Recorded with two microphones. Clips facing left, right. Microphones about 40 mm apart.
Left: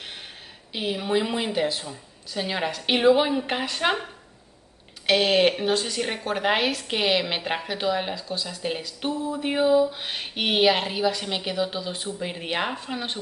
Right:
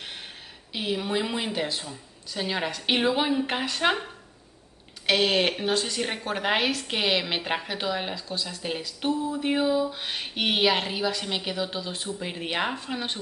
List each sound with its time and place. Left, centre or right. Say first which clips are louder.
0.7 s a woman's voice: left 3 dB; centre